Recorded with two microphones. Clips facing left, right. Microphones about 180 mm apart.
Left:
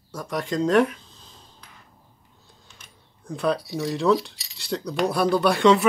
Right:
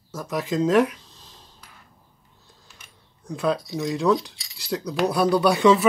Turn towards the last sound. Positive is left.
turn(degrees=0)  # may be behind; listen again after turning